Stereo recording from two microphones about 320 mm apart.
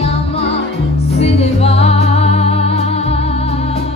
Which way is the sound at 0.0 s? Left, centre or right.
Centre.